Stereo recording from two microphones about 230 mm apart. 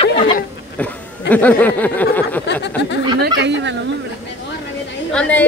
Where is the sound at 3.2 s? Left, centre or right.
Right.